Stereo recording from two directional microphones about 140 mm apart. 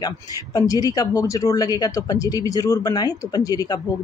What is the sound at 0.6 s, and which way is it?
Speech, 25° left (ahead or behind).